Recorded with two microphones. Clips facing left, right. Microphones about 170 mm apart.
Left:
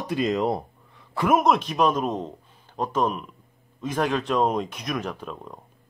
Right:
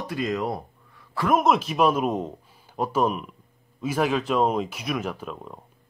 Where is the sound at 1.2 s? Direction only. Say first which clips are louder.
Left 1 dB; centre (ahead or behind).